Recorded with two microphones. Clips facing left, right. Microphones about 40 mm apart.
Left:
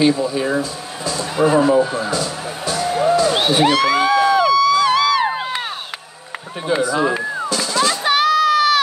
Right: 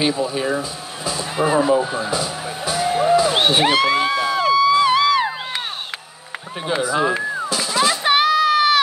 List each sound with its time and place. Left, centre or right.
0.0 s speech: centre
3.3 s speech: right
3.6 s speech: right
3.9 s a sound: centre
4.6 s a sound: centre
6.8 s speech: centre
7.1 s speech: centre
7.4 s music: centre